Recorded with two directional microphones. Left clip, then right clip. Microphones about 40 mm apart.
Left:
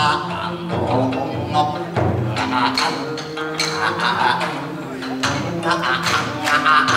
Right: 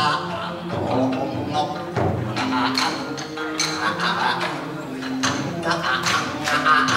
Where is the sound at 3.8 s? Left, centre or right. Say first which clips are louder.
Left 5 dB; centre.